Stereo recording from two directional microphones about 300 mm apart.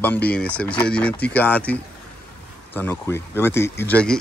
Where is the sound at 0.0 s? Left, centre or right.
Centre.